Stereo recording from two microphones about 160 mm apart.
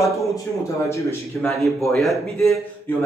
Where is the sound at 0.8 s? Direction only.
15° left (ahead or behind).